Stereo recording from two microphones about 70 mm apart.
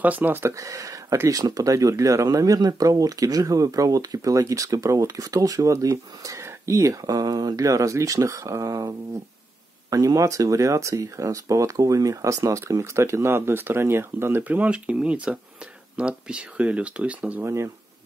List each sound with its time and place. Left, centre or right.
0.0 s speech: right
0.4 s speech: right; by 17.4 s centre
17.4 s speech: right